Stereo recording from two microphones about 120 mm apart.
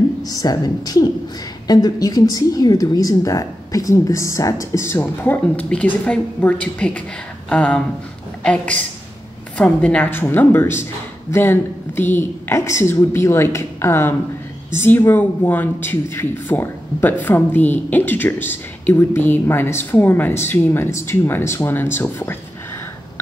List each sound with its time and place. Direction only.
0.2 s a woman's voice: 30° left (ahead or behind)